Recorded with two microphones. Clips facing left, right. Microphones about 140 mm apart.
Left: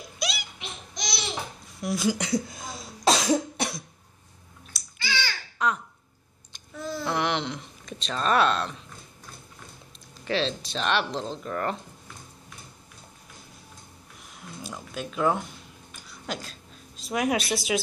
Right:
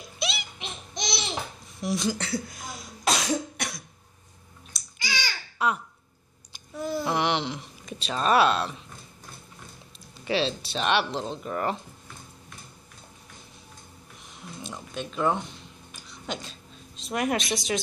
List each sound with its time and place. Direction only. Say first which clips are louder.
0.2 s baby laughter: even; centre (ahead or behind)
0.6 s laughter: right 2 dB; 25° right (ahead or behind)
1.8 s speech: right 1 dB; centre (ahead or behind)
2.0 s speech: left 3 dB; 15° left (ahead or behind)
3.1 s cough: left 4 dB; 30° left (ahead or behind)
4.9 s babbling: left 2 dB; 15° right (ahead or behind)
6.5 s a sound: right 4 dB; 15° right (ahead or behind)
7.1 s a sound: even; 5° right (ahead or behind)
10.1 s speech: right 1 dB; 5° right (ahead or behind)
14.6 s a sound: even; 5° left (ahead or behind)